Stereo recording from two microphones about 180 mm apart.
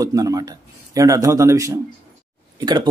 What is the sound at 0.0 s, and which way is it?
Speech, 20° right (ahead or behind).